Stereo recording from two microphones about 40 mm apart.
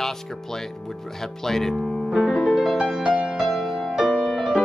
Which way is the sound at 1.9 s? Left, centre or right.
Centre.